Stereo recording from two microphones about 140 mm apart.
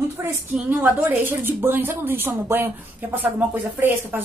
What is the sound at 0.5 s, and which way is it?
A woman's voice, 10° right (ahead or behind).